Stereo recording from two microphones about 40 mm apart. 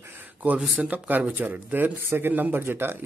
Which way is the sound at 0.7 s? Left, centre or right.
Right.